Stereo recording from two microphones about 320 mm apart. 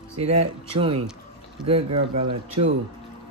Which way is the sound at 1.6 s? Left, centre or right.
Centre.